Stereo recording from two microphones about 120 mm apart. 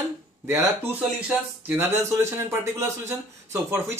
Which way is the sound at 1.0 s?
10° right (ahead or behind).